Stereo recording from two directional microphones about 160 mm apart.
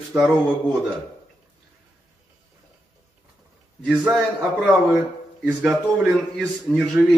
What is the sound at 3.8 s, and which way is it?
Speech, 10° right (ahead or behind).